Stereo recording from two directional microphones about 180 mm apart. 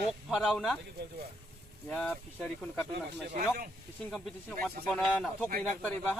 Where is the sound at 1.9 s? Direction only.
5° left (ahead or behind).